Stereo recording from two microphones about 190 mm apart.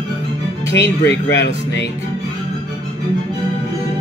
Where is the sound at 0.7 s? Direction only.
70° left (ahead or behind).